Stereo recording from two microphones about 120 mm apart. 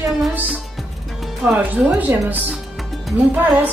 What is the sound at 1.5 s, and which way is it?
A woman's voice, 10° right (ahead or behind).